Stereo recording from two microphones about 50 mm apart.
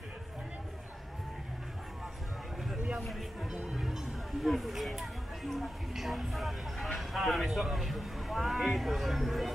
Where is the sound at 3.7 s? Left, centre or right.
Centre.